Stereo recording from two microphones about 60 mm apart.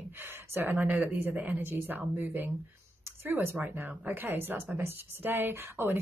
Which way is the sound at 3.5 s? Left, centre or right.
Right.